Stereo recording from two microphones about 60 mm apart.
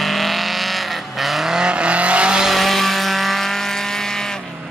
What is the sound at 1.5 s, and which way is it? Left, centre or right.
Vehicle, centre.